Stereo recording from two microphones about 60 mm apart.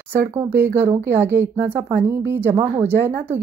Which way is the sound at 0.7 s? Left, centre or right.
Right.